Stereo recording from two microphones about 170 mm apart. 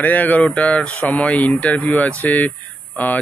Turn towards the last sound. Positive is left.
turn(degrees=10)  # may be behind; listen again after turning